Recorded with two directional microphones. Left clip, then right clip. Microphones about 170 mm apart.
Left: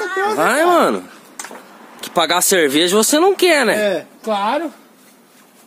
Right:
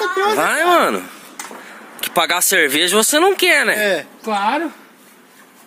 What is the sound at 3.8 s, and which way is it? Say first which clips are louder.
Speech: even; 60° left (ahead or behind).